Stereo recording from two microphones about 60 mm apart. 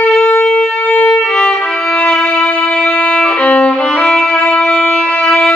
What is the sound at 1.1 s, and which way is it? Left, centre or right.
Violin, centre.